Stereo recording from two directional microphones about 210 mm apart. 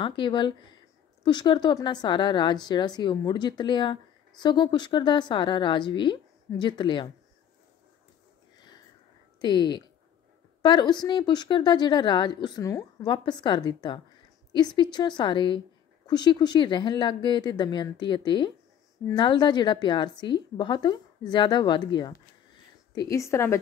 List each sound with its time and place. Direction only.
0.0 s a woman's voice: 20° left (ahead or behind)
9.4 s a woman's voice: 20° left (ahead or behind)